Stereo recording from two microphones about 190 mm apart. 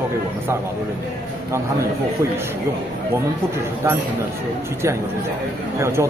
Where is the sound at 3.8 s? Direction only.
15° right (ahead or behind).